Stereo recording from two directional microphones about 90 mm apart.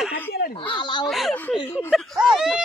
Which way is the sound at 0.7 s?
60° left (ahead or behind).